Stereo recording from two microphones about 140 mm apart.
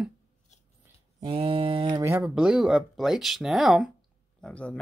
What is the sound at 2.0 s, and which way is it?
Speech, 20° right (ahead or behind).